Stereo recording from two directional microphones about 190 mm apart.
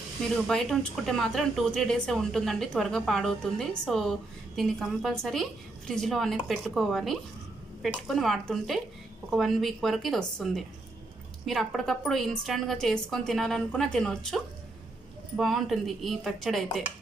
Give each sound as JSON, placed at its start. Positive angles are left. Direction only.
{"t": 0.5, "sound": "speech", "side_deg": 0}